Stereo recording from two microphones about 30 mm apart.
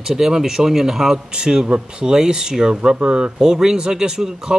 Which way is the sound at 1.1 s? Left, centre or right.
Right.